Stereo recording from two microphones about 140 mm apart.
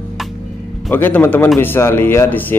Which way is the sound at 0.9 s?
15° left (ahead or behind).